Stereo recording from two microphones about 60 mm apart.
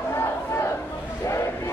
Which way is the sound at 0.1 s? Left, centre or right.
Left.